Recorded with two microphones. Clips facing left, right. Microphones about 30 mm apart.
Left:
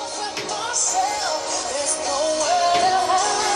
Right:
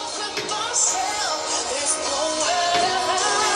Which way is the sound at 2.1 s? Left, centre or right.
Right.